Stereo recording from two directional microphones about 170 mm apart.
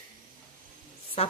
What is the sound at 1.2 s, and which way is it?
Speech, 35° left (ahead or behind).